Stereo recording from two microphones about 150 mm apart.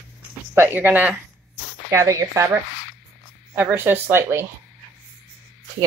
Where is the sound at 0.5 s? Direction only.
15° right (ahead or behind).